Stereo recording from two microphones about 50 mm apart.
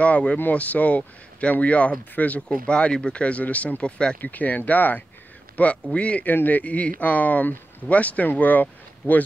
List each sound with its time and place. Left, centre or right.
0.0 s speech: left
4.2 s speech: left
6.2 s speech: left